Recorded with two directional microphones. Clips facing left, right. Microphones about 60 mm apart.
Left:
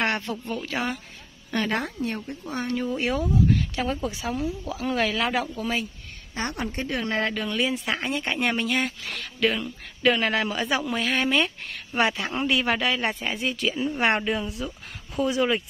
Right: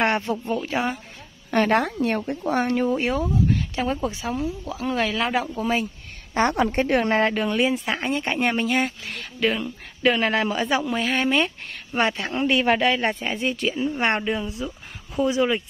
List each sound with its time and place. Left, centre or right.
0.2 s speech: centre
1.5 s a woman's voice: right
1.8 s speech: right
2.7 s speech: right
3.0 s speech: centre
5.6 s speech: centre
6.3 s speech: right
7.1 s speech: right
7.7 s speech: centre